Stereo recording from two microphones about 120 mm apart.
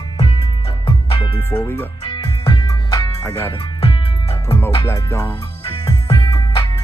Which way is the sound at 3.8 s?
55° left (ahead or behind).